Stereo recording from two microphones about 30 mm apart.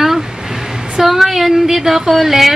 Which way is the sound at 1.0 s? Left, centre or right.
Centre.